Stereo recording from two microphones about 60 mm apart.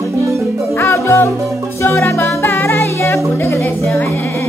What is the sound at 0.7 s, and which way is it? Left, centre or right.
Music, left.